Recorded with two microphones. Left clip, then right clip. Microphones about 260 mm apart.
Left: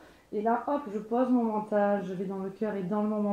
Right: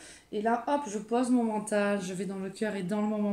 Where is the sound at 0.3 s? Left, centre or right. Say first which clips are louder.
Even; right.